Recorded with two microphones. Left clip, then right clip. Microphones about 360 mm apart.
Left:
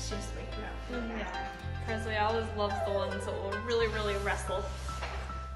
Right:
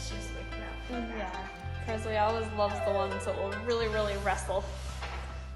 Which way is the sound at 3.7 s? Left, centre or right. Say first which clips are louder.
Even; centre.